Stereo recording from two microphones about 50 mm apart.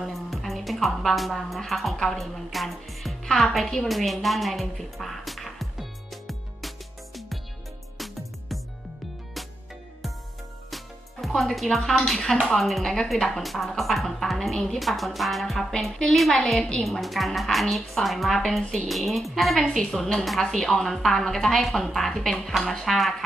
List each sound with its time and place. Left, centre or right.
0.0 s a woman's voice: centre
10.7 s speech: centre
12.5 s a woman's voice: centre
16.3 s a woman's voice: centre
17.0 s a woman's voice: centre
18.9 s a woman's voice: centre
19.8 s a woman's voice: centre